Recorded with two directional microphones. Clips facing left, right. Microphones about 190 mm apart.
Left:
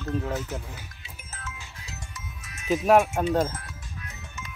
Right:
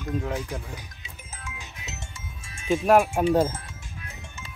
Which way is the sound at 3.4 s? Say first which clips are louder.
Right 3 dB; 25° right (ahead or behind).